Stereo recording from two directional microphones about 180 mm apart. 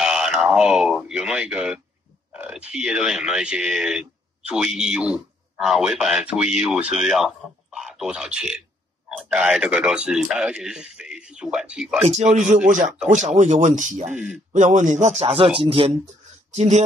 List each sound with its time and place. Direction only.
0.0 s speech: 5° right (ahead or behind)
12.0 s a man's voice: 40° right (ahead or behind)
14.1 s speech: 10° right (ahead or behind)
14.5 s a man's voice: 45° right (ahead or behind)
16.5 s a man's voice: 40° right (ahead or behind)